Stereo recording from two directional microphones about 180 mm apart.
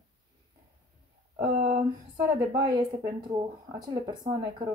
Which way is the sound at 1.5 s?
40° right (ahead or behind).